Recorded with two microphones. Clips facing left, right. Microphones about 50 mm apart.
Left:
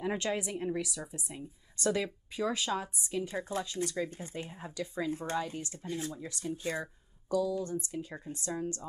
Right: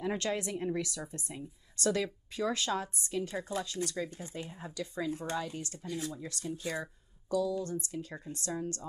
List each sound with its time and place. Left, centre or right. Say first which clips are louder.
0.0 s speech: even; centre
1.8 s speech: even; centre
3.3 s speech: left 1 dB; left
4.5 s speech: left 1 dB; centre